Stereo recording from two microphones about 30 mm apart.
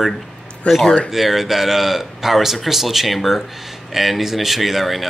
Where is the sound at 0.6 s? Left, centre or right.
Left.